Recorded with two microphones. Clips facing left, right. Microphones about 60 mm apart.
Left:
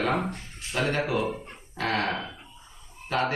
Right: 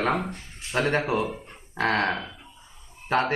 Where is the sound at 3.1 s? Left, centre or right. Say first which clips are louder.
Right 3 dB; right.